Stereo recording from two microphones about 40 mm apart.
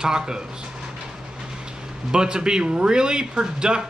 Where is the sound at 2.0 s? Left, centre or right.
Right.